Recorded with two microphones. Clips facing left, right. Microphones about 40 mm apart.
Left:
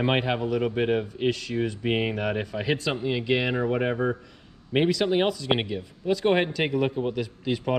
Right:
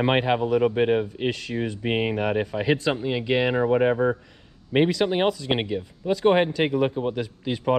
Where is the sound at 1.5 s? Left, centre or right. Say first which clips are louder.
Even; centre.